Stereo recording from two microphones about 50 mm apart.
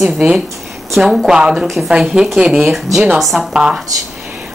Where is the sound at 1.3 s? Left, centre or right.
Centre.